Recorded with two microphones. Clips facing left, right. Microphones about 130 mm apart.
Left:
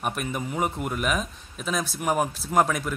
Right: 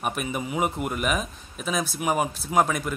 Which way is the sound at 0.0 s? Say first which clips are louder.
Right 1 dB; 5° right (ahead or behind).